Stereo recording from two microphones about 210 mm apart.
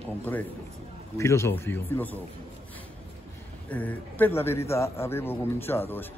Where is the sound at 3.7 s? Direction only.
10° left (ahead or behind).